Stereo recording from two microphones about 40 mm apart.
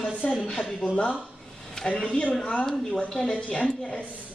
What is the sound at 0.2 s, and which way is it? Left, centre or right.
Speech, centre.